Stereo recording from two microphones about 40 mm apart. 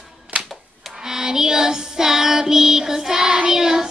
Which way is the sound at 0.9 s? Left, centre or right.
Centre.